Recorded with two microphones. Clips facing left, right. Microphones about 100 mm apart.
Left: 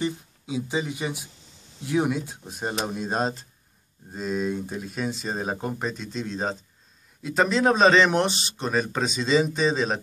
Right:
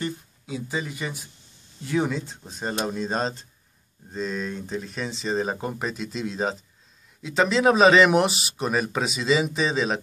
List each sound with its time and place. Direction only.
0.0 s speech: 15° left (ahead or behind); by 9.9 s centre (ahead or behind)